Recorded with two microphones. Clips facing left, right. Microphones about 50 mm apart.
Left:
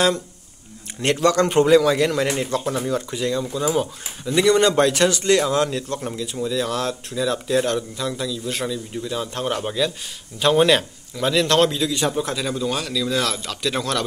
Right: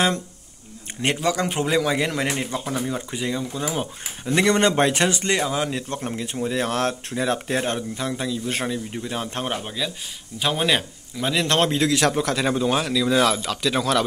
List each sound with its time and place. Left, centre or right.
1.1 s a man's voice: centre
4.2 s a man's voice: right
6.4 s speech: right
9.6 s speech: centre
11.3 s speech: right
11.9 s a man's voice: right
12.4 s speech: right; by 14.0 s centre